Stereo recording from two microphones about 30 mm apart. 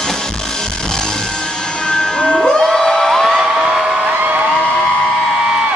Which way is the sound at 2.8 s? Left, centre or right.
Centre.